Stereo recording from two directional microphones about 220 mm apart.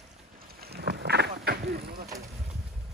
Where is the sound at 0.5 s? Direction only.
45° right (ahead or behind).